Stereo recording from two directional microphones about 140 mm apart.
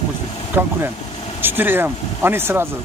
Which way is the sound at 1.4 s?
15° right (ahead or behind).